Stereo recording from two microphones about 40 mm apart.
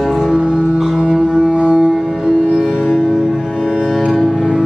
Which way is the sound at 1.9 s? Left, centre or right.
Centre.